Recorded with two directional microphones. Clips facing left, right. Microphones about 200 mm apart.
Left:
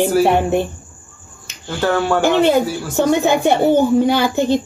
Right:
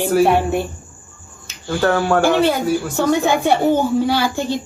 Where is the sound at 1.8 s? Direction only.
Centre (ahead or behind).